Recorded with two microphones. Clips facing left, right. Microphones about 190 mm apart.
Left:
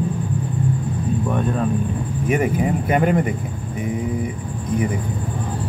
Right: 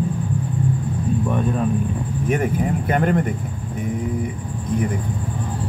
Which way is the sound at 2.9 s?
10° left (ahead or behind).